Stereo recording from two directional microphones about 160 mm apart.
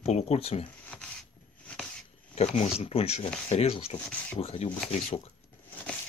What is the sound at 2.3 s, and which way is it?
Speech, 45° left (ahead or behind).